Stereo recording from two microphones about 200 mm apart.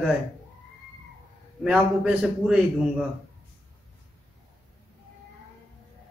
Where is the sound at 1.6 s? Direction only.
5° right (ahead or behind).